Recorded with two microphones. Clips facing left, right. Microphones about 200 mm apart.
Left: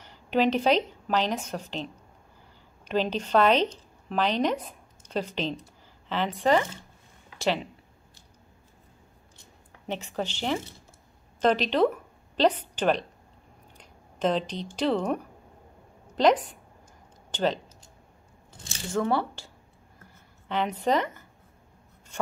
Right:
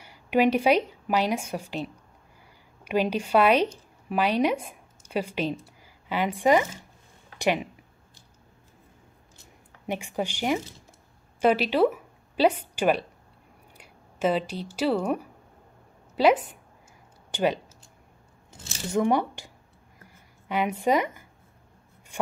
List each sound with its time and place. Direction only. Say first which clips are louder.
0.0 s a woman's voice: right 2 dB; 10° right (ahead or behind)
9.8 s a woman's voice: right 2 dB; 10° right (ahead or behind)
13.7 s a sound: right 1 dB; 10° right (ahead or behind)
14.8 s a woman's voice: right 1 dB; 10° right (ahead or behind)
18.7 s a woman's voice: right 3 dB; 20° right (ahead or behind)
20.0 s writing: right 2 dB; 10° right (ahead or behind)
22.1 s a sound: right 1 dB; 15° right (ahead or behind)